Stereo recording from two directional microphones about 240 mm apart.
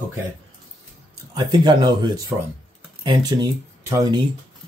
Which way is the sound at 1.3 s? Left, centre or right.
Centre.